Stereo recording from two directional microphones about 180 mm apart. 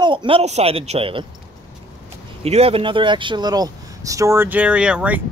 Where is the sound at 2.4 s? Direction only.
35° right (ahead or behind).